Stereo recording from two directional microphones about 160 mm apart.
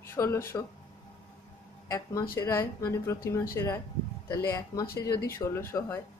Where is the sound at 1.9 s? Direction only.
20° left (ahead or behind).